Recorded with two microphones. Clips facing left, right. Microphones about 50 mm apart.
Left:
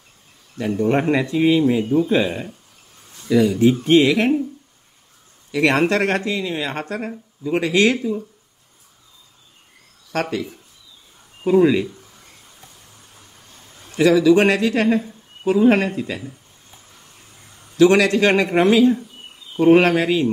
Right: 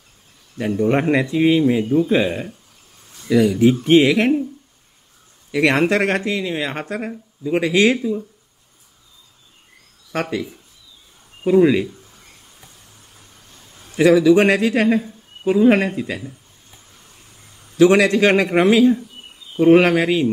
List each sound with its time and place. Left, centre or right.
0.6 s speech: centre
1.9 s speech: centre
2.1 s speech: centre
5.5 s speech: right
11.4 s speech: centre
13.9 s speech: centre
17.7 s speech: centre